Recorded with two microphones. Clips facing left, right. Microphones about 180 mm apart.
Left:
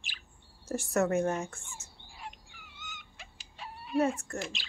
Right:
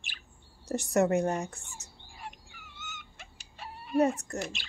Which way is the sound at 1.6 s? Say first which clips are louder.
Even; 40° right (ahead or behind).